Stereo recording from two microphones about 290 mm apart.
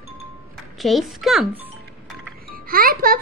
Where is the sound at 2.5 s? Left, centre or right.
Right.